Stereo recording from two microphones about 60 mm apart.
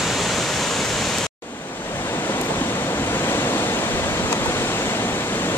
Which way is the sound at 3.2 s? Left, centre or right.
Left.